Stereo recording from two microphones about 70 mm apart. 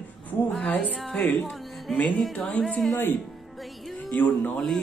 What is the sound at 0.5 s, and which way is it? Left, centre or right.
Music, centre.